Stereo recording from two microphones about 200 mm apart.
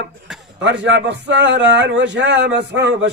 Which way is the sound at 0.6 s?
65° right (ahead or behind).